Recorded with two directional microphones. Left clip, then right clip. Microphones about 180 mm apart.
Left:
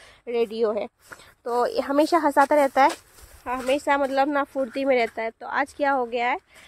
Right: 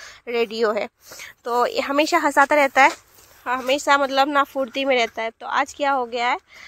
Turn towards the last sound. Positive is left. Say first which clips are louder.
# right 2 dB
turn(degrees=15)  # may be behind; listen again after turning